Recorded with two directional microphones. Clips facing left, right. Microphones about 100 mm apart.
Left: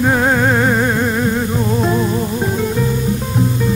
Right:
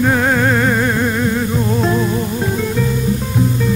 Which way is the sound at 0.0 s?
15° left (ahead or behind).